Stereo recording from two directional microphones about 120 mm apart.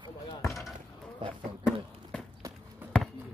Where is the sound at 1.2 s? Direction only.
45° right (ahead or behind).